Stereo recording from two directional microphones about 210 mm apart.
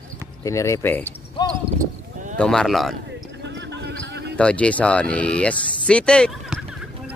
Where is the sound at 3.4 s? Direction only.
55° right (ahead or behind).